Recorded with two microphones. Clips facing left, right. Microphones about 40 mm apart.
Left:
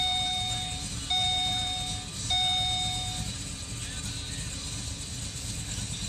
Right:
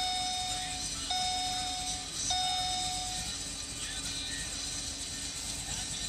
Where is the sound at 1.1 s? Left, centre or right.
Left.